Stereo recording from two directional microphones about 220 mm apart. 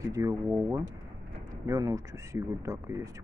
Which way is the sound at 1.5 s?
15° right (ahead or behind).